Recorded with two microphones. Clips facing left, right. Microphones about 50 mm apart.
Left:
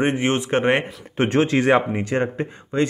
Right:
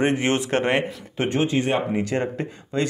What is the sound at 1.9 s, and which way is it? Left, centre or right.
Speech, left.